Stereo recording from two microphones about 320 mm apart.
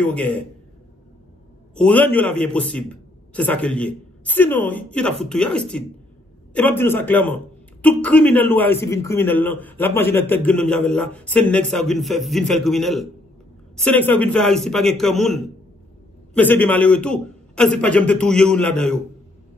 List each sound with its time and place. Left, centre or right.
0.0 s a man's voice: centre
1.8 s a man's voice: centre